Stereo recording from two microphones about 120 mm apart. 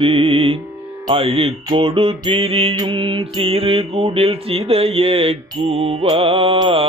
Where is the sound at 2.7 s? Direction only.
40° right (ahead or behind).